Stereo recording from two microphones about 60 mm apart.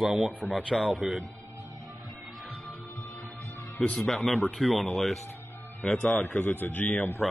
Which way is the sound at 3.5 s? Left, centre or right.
Left.